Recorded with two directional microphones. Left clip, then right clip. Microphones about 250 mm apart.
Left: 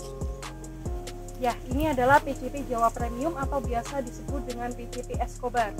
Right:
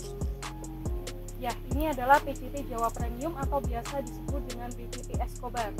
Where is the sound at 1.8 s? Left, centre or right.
Centre.